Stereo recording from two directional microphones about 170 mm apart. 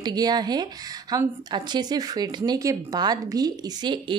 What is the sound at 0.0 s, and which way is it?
A woman's voice, 25° right (ahead or behind).